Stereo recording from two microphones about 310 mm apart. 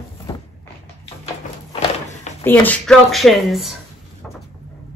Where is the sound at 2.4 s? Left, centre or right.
Centre.